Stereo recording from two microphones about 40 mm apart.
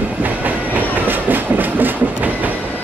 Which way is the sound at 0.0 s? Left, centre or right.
Right.